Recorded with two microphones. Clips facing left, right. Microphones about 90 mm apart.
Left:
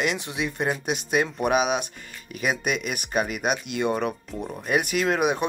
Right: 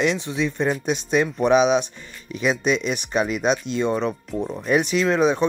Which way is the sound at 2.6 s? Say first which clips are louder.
Right 5 dB; 50° left (ahead or behind).